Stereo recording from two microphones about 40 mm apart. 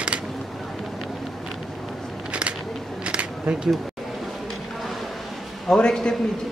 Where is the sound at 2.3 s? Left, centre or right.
Right.